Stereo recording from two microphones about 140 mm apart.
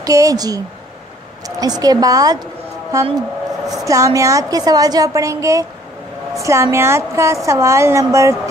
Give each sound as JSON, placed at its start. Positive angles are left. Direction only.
{"t": 0.0, "sound": "a woman's voice", "side_deg": -25}
{"t": 1.6, "sound": "a woman's voice", "side_deg": -25}
{"t": 3.2, "sound": "a sound", "side_deg": -5}
{"t": 3.8, "sound": "a woman's voice", "side_deg": -25}